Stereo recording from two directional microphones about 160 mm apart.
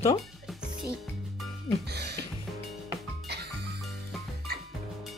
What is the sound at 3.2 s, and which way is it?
Music, 90° right.